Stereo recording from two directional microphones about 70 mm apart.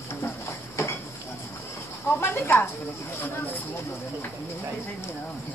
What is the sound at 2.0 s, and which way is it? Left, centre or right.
Speech, left.